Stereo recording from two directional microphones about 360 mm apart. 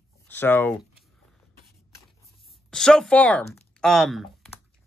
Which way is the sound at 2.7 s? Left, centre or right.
Centre.